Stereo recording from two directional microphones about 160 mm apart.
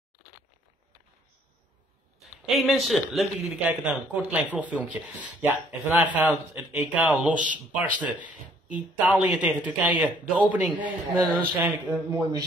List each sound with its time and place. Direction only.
2.1 s a man's voice: centre (ahead or behind); by 12.4 s 20° right (ahead or behind)